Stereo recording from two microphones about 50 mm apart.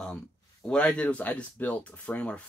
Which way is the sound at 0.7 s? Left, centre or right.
Left.